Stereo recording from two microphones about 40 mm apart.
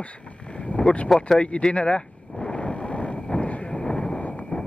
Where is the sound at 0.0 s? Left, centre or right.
Left.